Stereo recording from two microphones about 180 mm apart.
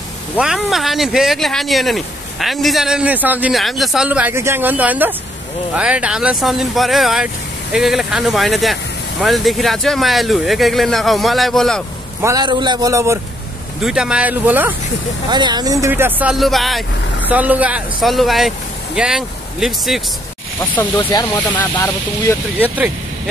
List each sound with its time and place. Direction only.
0.4 s speech: centre (ahead or behind)
12.2 s a man's voice: 20° right (ahead or behind)
13.8 s speech: 5° right (ahead or behind)
15.2 s speech: 25° right (ahead or behind); by 20.0 s centre (ahead or behind)
20.9 s speech: 20° left (ahead or behind)
21.3 s speech: 10° left (ahead or behind)